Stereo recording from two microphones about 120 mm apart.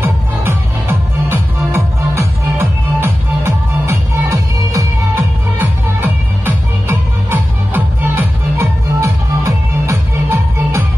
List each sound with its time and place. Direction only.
0.0 s music: 20° right (ahead or behind)